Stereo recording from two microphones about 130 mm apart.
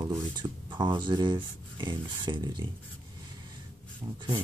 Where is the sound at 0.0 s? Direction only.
30° right (ahead or behind).